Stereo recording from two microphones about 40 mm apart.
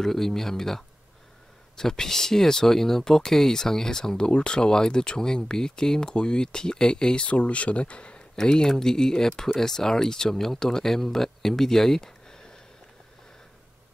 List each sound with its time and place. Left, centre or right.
0.0 s speech: centre
7.2 s speech: left
8.4 s speech: centre